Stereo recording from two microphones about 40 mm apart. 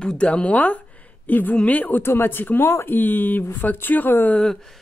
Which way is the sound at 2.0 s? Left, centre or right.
Left.